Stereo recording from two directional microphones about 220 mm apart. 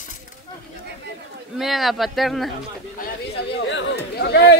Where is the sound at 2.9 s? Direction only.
50° left (ahead or behind).